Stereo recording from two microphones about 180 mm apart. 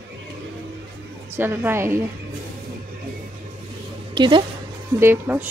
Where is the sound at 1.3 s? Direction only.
10° right (ahead or behind).